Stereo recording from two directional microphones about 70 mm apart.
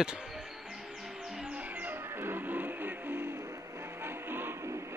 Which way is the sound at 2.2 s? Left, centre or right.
Right.